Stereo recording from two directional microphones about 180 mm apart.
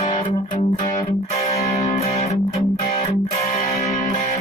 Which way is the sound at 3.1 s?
40° left (ahead or behind).